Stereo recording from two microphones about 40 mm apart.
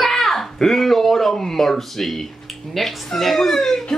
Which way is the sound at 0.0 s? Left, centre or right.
Centre.